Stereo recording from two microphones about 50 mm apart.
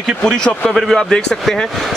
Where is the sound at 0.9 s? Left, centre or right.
Centre.